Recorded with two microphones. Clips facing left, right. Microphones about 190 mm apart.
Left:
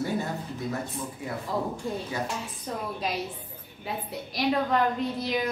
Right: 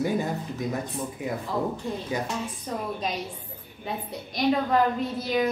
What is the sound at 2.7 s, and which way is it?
A woman's voice, centre (ahead or behind).